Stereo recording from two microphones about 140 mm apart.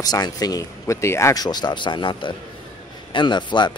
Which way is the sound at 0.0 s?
30° left (ahead or behind).